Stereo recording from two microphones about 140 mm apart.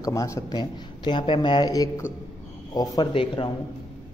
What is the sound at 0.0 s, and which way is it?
A man's voice, 25° left (ahead or behind).